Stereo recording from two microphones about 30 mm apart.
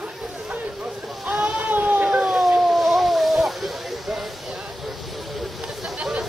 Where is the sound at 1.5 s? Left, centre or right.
Right.